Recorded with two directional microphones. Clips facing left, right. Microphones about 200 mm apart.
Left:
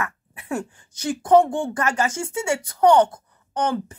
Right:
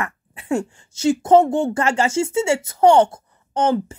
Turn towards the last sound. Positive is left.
turn(degrees=-25)  # may be behind; listen again after turning